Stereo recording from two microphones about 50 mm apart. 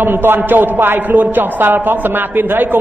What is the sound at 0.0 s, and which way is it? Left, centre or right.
A man's voice, right.